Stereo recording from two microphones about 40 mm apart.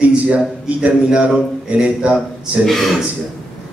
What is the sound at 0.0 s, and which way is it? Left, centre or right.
Speech, right.